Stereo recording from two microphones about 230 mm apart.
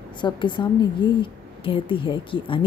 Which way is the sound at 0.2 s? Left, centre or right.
Centre.